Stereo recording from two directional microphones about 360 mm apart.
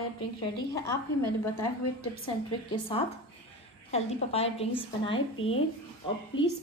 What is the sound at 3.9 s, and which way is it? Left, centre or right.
A woman's voice, centre.